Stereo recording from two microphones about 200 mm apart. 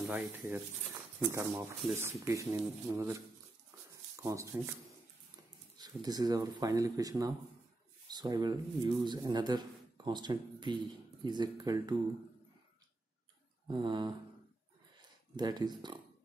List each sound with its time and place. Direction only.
0.0 s speech: centre (ahead or behind)
4.2 s speech: 15° right (ahead or behind)
5.8 s speech: 20° right (ahead or behind)
13.7 s speech: 25° right (ahead or behind)